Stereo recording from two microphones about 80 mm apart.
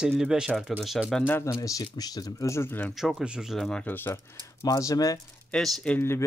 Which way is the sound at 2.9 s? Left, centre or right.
Centre.